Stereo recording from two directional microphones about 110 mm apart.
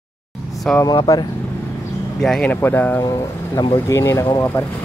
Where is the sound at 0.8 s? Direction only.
35° left (ahead or behind).